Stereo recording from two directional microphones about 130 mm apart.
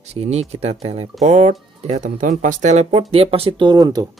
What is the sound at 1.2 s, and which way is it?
Speech, 60° right (ahead or behind).